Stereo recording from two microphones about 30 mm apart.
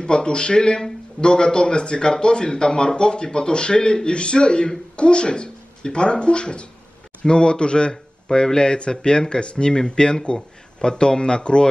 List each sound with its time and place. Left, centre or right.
0.0 s a man's voice: left
7.9 s a sound: left
8.5 s a man's voice: left